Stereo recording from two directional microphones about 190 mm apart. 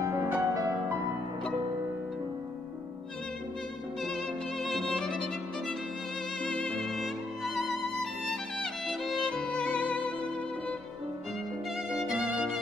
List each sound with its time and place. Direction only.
0.0 s music: 15° right (ahead or behind)
4.6 s violin: centre (ahead or behind)
6.4 s music: 5° left (ahead or behind)
8.8 s violin: centre (ahead or behind)
11.9 s music: 5° right (ahead or behind)